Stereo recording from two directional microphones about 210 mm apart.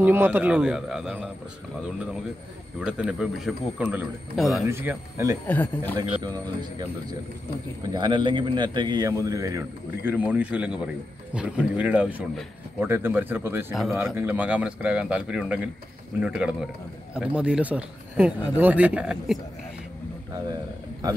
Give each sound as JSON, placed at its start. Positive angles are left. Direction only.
{"t": 0.0, "sound": "a man's voice", "side_deg": -10}
{"t": 2.8, "sound": "a man's voice", "side_deg": -5}
{"t": 4.6, "sound": "a man's voice", "side_deg": -10}
{"t": 5.5, "sound": "a man's voice", "side_deg": 10}
{"t": 5.9, "sound": "a man's voice", "side_deg": -20}